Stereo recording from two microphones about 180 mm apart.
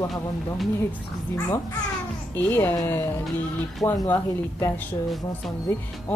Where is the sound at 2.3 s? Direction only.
10° left (ahead or behind).